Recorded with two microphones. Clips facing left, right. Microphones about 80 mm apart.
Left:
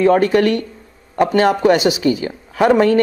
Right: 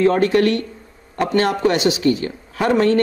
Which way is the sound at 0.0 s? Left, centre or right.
Centre.